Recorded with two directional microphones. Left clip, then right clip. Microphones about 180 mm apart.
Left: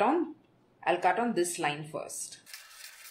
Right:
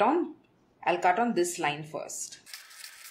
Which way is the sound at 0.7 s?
10° right (ahead or behind).